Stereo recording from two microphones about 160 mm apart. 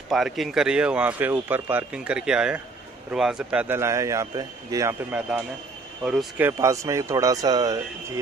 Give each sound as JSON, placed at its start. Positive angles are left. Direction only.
{"t": 0.1, "sound": "speech", "side_deg": 0}
{"t": 6.0, "sound": "speech", "side_deg": -5}